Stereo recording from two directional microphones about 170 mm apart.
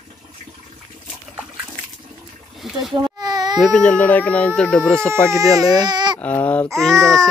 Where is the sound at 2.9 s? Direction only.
25° right (ahead or behind).